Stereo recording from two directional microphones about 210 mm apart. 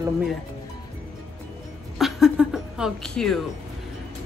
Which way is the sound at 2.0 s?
Centre (ahead or behind).